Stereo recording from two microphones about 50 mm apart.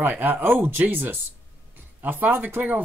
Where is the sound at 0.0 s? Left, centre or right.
Right.